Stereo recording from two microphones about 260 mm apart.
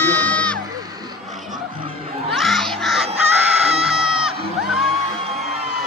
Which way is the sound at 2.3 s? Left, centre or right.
Centre.